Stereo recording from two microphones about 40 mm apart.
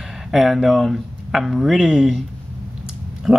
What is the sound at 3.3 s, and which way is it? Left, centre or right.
Speech, centre.